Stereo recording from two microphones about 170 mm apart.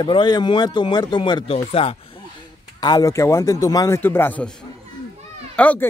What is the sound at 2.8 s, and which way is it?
Speech, 20° left (ahead or behind).